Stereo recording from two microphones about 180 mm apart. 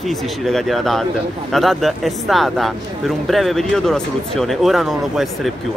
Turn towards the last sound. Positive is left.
turn(degrees=0)  # may be behind; listen again after turning